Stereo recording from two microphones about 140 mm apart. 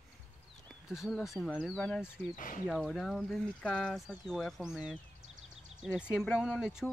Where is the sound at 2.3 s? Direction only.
70° left (ahead or behind).